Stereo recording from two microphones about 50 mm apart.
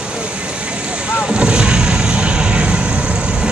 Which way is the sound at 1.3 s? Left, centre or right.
Centre.